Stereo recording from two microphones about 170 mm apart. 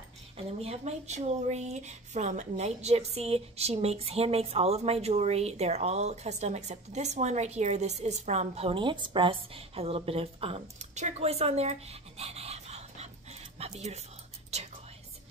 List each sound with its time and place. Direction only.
0.4 s speech: 35° right (ahead or behind)